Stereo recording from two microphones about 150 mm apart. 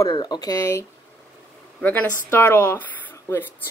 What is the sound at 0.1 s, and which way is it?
A woman's voice, 30° left (ahead or behind).